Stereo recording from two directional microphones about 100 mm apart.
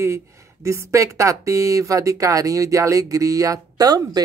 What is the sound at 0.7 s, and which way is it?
Speech, 30° right (ahead or behind).